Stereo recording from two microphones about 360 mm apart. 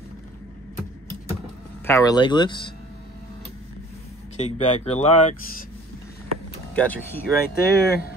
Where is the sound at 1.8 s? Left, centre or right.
Centre.